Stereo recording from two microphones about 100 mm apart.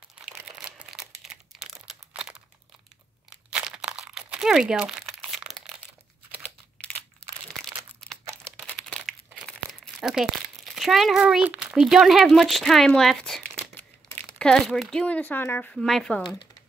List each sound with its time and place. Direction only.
0.2 s crumpling: 10° right (ahead or behind)
6.4 s computer keyboard: 15° left (ahead or behind)
8.7 s crumpling: 5° left (ahead or behind); by 15.7 s 20° left (ahead or behind)
15.7 s speech: 5° left (ahead or behind)
16.2 s speech: 50° left (ahead or behind)